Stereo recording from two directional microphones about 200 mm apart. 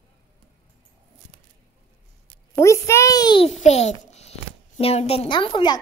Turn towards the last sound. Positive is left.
turn(degrees=20)  # may be behind; listen again after turning